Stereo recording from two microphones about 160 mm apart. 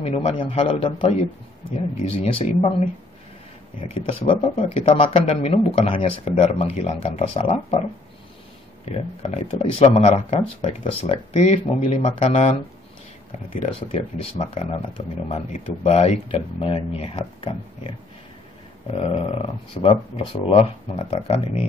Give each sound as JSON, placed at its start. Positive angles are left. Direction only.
{"t": 0.0, "sound": "speech", "side_deg": 40}
{"t": 3.8, "sound": "speech", "side_deg": 35}
{"t": 8.8, "sound": "speech", "side_deg": 40}
{"t": 14.3, "sound": "speech", "side_deg": 40}